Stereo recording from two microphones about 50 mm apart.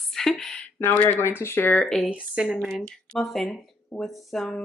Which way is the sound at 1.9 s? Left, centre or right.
Centre.